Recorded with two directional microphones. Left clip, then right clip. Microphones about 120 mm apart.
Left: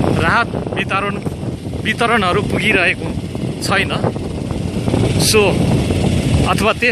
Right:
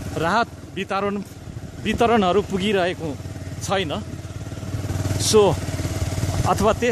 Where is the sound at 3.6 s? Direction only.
20° right (ahead or behind).